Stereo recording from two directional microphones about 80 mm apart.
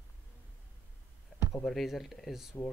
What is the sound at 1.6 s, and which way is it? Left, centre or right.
Speech, centre.